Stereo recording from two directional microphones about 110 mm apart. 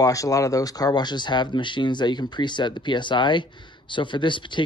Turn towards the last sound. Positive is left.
turn(degrees=45)  # may be behind; listen again after turning